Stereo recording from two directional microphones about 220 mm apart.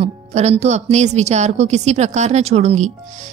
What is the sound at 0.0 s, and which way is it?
Speech, 30° right (ahead or behind).